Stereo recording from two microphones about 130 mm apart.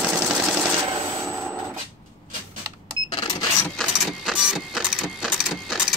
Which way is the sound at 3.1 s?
35° left (ahead or behind).